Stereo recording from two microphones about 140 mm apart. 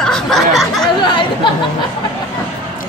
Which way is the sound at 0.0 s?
5° left (ahead or behind).